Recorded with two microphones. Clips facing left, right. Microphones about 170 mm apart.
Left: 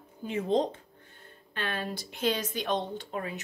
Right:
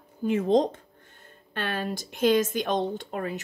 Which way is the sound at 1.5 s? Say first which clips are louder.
Right 4 dB; 45° right (ahead or behind).